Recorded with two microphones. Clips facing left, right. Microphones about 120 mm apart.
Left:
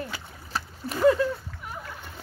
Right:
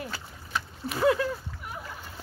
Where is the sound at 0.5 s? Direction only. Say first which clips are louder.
Even; 35° left (ahead or behind).